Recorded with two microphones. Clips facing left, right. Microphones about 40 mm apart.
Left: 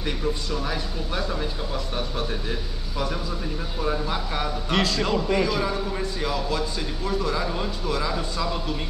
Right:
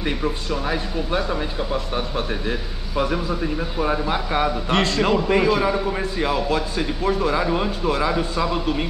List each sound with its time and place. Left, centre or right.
0.0 s speech: right